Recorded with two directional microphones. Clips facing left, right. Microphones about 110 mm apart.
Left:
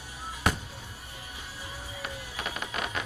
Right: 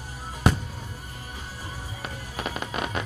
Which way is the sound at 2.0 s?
35° right (ahead or behind).